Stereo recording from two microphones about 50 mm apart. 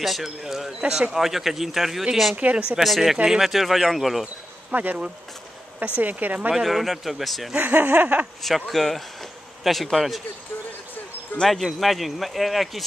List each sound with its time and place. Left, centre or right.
0.0 s speech: centre
2.3 s speech: right
2.8 s speech: centre
4.7 s speech: right
5.9 s speech: right
6.5 s speech: centre
7.5 s speech: right
8.4 s speech: centre
11.4 s speech: centre